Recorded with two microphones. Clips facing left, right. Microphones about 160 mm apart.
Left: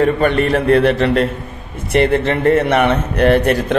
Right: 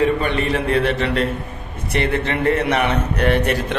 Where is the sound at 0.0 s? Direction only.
50° left (ahead or behind).